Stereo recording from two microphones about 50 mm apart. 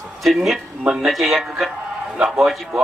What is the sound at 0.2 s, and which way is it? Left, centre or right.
A man's voice, centre.